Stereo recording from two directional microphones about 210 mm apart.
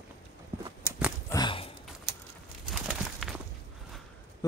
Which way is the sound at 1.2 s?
20° left (ahead or behind).